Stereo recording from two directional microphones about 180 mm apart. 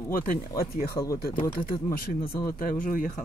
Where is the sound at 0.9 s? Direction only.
20° left (ahead or behind).